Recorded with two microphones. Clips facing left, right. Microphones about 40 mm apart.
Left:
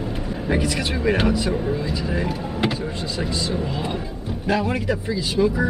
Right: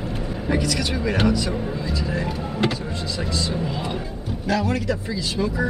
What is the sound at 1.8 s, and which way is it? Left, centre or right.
Speech, centre.